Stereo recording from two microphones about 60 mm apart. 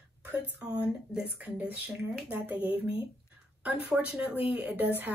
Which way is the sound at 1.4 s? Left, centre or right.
Right.